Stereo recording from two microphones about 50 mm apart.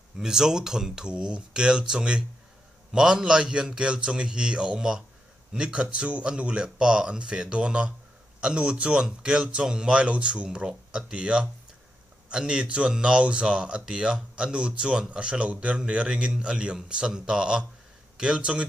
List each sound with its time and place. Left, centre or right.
0.2 s a man's voice: centre